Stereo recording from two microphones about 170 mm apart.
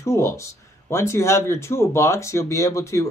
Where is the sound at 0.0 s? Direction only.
15° left (ahead or behind).